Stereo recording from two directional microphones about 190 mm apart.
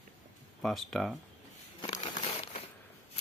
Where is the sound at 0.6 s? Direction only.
Centre (ahead or behind).